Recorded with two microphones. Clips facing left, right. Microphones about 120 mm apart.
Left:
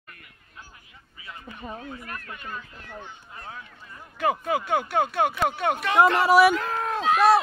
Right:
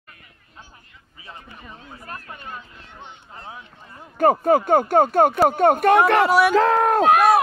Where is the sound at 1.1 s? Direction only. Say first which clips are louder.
Even; 30° right (ahead or behind).